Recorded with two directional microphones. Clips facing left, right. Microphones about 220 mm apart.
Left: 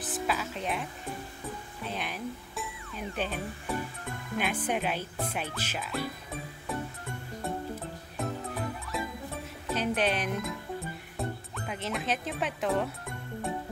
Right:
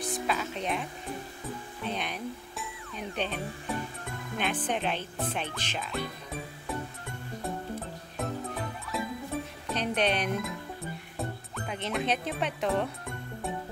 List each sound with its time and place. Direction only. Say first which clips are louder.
0.0 s music: right 1 dB; 5° left (ahead or behind)
1.9 s speech: right 1 dB; 5° left (ahead or behind)
4.4 s speech: even; 10° left (ahead or behind)
8.9 s music: right 2 dB; centre (ahead or behind)
9.7 s speech: even; 5° left (ahead or behind)
11.1 s music: left 1 dB; centre (ahead or behind)